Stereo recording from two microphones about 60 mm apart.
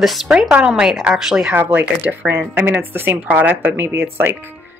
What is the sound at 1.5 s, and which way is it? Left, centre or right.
Speech, right.